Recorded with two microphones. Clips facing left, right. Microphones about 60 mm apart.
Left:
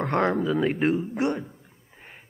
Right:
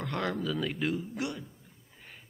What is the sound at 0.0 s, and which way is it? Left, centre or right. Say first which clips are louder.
Speech: left 9 dB; left.